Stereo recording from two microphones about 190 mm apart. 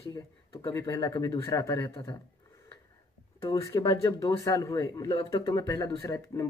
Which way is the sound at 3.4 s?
20° left (ahead or behind).